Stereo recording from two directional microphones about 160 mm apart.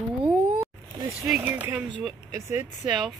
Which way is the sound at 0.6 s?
20° right (ahead or behind).